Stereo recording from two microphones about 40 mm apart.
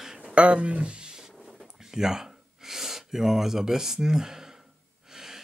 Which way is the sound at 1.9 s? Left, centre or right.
Centre.